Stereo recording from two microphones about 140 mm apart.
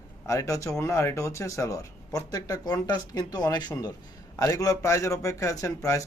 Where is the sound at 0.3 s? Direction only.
20° left (ahead or behind).